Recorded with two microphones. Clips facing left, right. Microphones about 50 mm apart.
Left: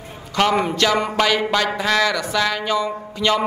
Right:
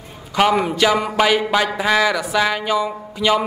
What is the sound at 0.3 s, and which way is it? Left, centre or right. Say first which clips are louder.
A man's voice: right 2 dB; centre.